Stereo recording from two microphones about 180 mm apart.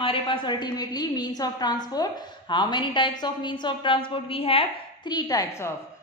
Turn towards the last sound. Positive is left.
turn(degrees=20)  # may be behind; listen again after turning